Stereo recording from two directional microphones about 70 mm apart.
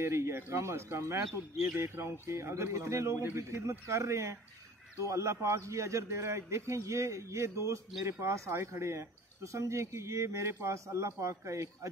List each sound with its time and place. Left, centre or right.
0.0 s speech: right